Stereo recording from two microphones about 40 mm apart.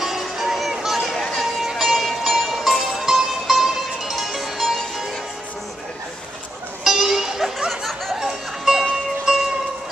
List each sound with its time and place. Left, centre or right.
0.0 s music: centre
1.1 s a sound: centre
1.8 s music: centre
6.8 s music: centre